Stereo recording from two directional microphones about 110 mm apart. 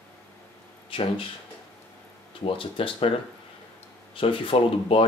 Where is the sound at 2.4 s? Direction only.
50° left (ahead or behind).